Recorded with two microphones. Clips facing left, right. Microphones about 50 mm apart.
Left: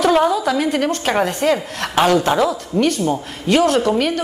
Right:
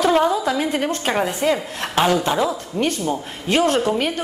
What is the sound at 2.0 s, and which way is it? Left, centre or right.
Speech, left.